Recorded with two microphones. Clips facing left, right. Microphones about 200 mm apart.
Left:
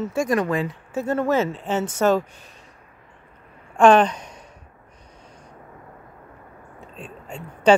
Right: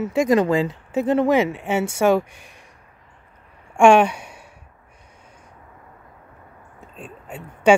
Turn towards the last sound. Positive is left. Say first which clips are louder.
# right 1 dB
turn(degrees=-5)  # may be behind; listen again after turning